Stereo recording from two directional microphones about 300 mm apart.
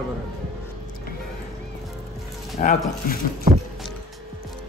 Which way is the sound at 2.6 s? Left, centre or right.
Left.